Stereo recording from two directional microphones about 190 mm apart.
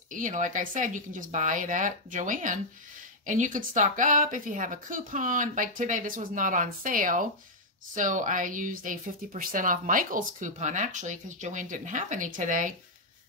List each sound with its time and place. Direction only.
0.1 s speech: 45° right (ahead or behind)